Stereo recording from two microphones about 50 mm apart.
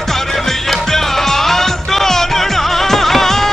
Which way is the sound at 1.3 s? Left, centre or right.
Centre.